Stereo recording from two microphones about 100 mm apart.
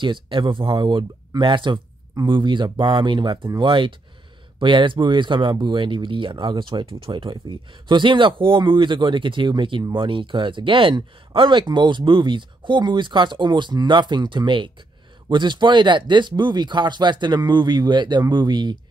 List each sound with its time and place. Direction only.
0.0 s speech: 55° right (ahead or behind)